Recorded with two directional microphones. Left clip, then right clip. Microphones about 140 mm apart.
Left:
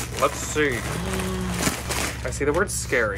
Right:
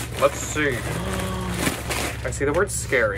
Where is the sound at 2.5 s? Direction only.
30° left (ahead or behind).